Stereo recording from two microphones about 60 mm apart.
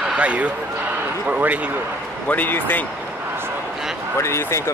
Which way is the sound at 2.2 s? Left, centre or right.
Left.